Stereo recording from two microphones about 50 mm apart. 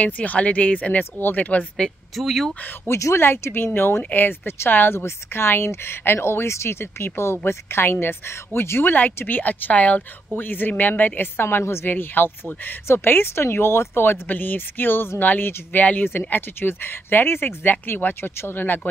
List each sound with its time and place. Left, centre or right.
0.0 s speech: left
2.1 s speech: centre
2.9 s speech: left
8.9 s speech: left
10.3 s speech: left
11.9 s speech: left
14.2 s speech: left